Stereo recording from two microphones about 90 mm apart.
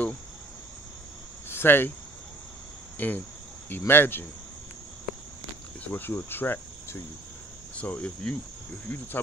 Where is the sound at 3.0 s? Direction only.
20° left (ahead or behind).